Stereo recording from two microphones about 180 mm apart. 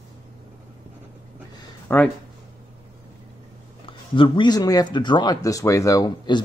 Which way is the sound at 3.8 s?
30° left (ahead or behind).